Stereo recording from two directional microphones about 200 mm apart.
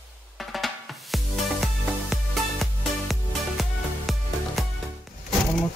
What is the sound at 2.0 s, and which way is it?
Music, centre (ahead or behind).